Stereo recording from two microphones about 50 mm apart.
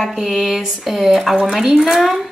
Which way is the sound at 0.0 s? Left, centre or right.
Centre.